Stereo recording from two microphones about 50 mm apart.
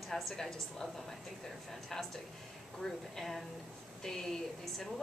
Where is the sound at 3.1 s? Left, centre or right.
Centre.